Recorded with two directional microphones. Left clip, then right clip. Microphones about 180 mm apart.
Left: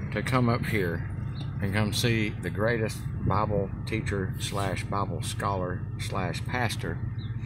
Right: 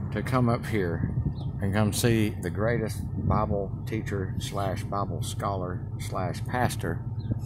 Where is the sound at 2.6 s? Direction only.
Centre (ahead or behind).